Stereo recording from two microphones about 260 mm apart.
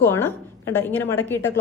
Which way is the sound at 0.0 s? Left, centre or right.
Centre.